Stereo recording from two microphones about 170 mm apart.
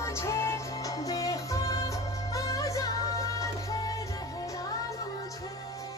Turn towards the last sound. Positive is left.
turn(degrees=20)  # may be behind; listen again after turning